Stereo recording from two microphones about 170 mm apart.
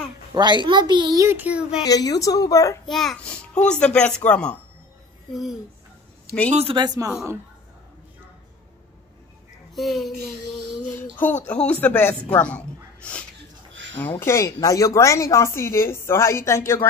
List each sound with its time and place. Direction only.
0.3 s a child's voice: 25° right (ahead or behind); by 1.8 s 5° right (ahead or behind)
1.9 s a woman's voice: 20° left (ahead or behind)
2.9 s speech: centre (ahead or behind)
6.5 s speech: 35° right (ahead or behind)
9.8 s speech: centre (ahead or behind)
14.2 s speech: 20° left (ahead or behind)